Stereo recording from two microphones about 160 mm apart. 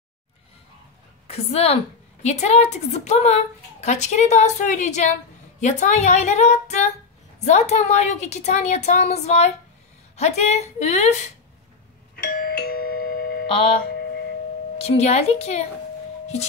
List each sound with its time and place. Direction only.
1.2 s a woman's voice: 40° left (ahead or behind)
12.4 s music: 70° left (ahead or behind)
13.5 s music: 35° left (ahead or behind)
14.8 s a woman's voice: 40° left (ahead or behind)